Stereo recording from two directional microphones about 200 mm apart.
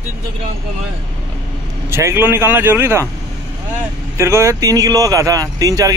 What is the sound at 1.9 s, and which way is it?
Speech, 10° right (ahead or behind).